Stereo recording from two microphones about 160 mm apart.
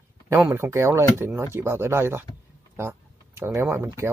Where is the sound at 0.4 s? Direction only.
15° right (ahead or behind).